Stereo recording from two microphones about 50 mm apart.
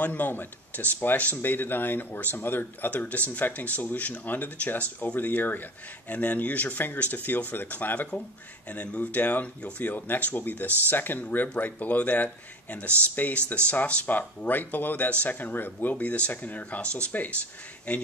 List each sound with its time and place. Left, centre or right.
0.0 s speech: left
8.6 s speech: left
13.7 s speech: left